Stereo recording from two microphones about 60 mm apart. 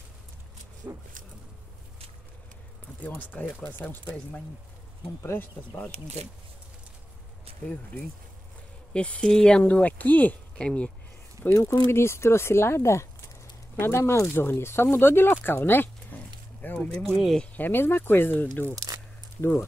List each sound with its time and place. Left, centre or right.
0.8 s speech: right
3.2 s speech: left
5.2 s speech: left
5.7 s speech: left
7.6 s speech: left
9.3 s speech: centre
9.6 s speech: left
10.6 s speech: centre
11.7 s speech: left
15.4 s a sound: left
16.7 s speech: centre
17.6 s speech: left